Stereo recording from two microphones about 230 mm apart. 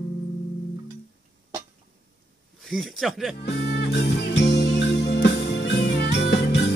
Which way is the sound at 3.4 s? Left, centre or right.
Left.